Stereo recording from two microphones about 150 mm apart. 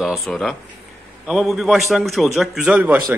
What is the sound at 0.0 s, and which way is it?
A man's voice, centre (ahead or behind).